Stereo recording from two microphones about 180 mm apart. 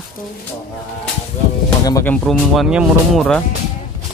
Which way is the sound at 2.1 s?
Centre (ahead or behind).